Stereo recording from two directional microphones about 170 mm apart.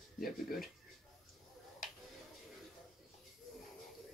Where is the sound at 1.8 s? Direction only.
50° left (ahead or behind).